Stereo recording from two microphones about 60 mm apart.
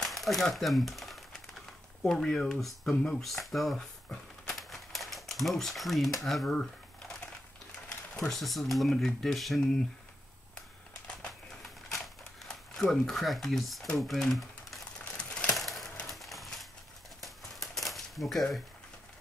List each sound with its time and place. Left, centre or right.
0.0 s crumpling: centre
2.0 s speech: centre
4.1 s crumpling: centre
8.3 s speech: centre
12.4 s speech: centre
15.0 s crumpling: centre
15.5 s splinter: centre
16.1 s a sound: centre
17.2 s typewriter: centre